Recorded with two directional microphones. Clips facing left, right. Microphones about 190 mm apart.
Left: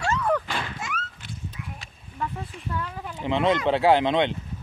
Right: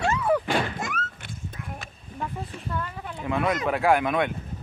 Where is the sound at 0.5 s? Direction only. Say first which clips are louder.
Right 5 dB; 50° right (ahead or behind).